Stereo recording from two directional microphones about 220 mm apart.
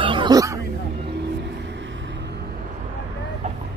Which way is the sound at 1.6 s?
55° right (ahead or behind).